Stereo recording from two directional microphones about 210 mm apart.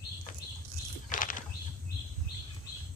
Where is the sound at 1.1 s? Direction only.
40° left (ahead or behind).